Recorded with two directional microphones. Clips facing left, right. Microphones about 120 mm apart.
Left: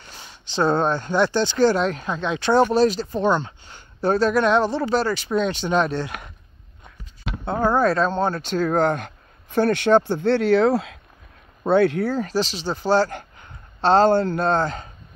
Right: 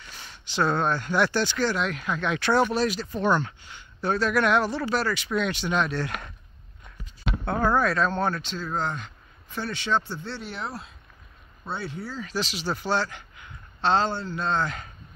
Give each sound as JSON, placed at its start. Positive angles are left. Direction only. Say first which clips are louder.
{"t": 0.0, "sound": "speech", "louder": "left 2 dB", "side_deg": 25}
{"t": 3.7, "sound": "speech", "louder": "left 6 dB", "side_deg": 35}
{"t": 7.4, "sound": "speech", "louder": "left 4 dB", "side_deg": 25}
{"t": 8.4, "sound": "speech", "louder": "left 10 dB", "side_deg": 55}
{"t": 11.6, "sound": "speech", "louder": "left 16 dB", "side_deg": 65}
{"t": 12.3, "sound": "speech", "louder": "left 5 dB", "side_deg": 35}